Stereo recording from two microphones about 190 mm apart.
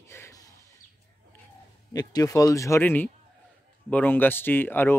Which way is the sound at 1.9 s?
20° left (ahead or behind).